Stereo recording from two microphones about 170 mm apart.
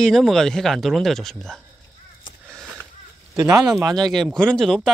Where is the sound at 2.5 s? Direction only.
15° right (ahead or behind).